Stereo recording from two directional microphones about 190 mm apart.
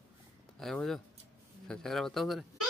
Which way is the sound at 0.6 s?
Centre (ahead or behind).